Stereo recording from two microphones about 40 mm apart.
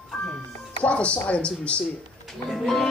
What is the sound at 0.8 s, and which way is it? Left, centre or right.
Speech, left.